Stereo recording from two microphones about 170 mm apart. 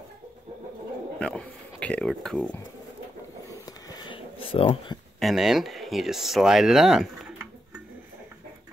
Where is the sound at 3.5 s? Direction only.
20° left (ahead or behind).